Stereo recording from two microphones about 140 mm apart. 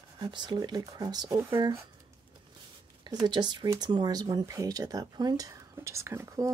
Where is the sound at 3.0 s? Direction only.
35° right (ahead or behind).